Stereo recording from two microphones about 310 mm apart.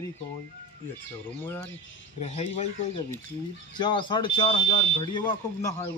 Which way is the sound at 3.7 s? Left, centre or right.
Centre.